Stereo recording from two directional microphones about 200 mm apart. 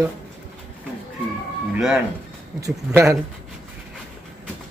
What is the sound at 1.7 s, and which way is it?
Music, centre (ahead or behind).